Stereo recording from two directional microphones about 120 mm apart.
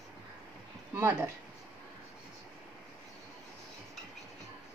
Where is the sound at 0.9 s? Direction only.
20° right (ahead or behind).